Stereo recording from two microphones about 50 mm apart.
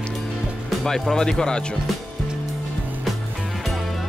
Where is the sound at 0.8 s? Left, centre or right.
Centre.